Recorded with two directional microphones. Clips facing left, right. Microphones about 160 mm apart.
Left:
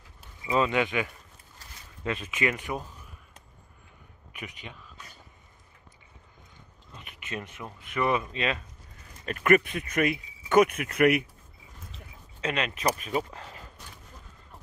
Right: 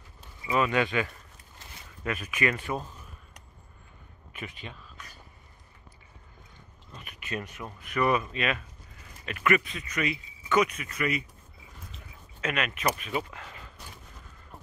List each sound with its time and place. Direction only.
0.5 s speech: 20° left (ahead or behind)
4.3 s speech: 15° left (ahead or behind)
7.0 s speech: 25° left (ahead or behind)
9.2 s speech: 45° left (ahead or behind); by 11.2 s 65° left (ahead or behind)
12.4 s speech: 30° left (ahead or behind)